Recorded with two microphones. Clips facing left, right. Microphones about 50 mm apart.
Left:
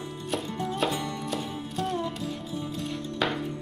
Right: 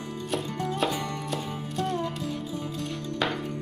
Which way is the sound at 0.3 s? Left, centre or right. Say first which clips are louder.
Even; centre.